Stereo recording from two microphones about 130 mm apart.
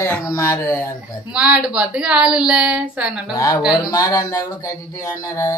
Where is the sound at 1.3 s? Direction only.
10° right (ahead or behind).